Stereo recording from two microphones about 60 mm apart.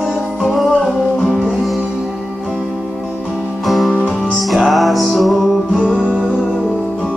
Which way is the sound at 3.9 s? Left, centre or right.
Left.